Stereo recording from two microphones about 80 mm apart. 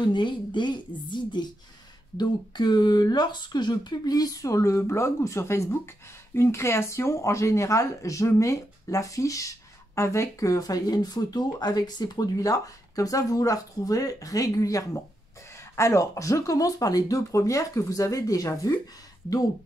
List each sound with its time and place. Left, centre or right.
0.0 s a woman's voice: left